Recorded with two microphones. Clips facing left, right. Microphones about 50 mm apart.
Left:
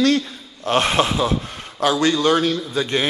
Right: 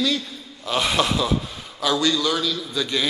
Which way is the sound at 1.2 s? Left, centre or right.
Left.